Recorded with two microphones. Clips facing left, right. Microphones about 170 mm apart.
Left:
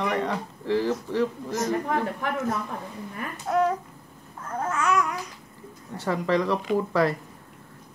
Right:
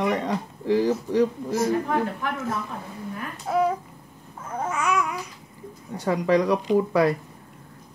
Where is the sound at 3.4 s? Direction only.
5° right (ahead or behind).